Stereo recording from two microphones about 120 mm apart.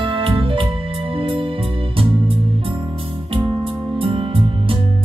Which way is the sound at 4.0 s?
45° right (ahead or behind).